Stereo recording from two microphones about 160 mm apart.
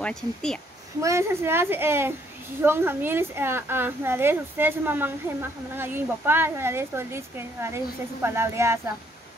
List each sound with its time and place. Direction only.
0.0 s speech: 5° left (ahead or behind)
1.0 s a woman's voice: 15° right (ahead or behind)